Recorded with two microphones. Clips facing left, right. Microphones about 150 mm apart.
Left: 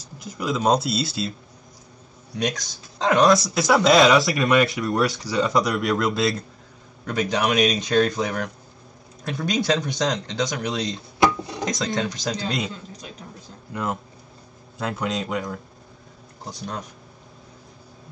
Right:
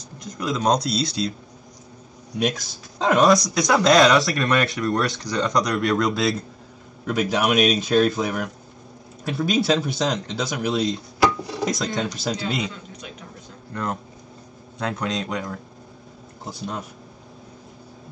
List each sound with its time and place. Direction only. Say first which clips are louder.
0.0 s speech: even; 5° left (ahead or behind)
2.3 s speech: right 2 dB; 5° right (ahead or behind)
11.1 s a sound: left 1 dB; 20° left (ahead or behind)
11.6 s speech: right 1 dB; centre (ahead or behind)
12.7 s a sound: even; 35° left (ahead or behind)
13.7 s speech: even; 10° left (ahead or behind)